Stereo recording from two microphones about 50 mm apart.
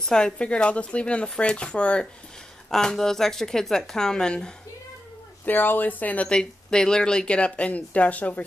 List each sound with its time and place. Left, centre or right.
0.1 s speech: centre
2.7 s speech: centre
5.4 s speech: left
6.2 s speech: centre; by 8.5 s left